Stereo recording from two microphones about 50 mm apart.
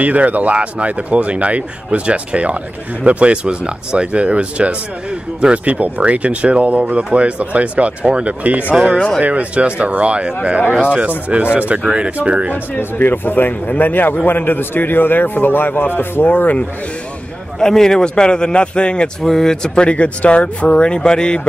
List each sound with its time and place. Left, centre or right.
0.0 s speech: right
13.0 s a man's voice: left
17.6 s a man's voice: centre
19.2 s speech: centre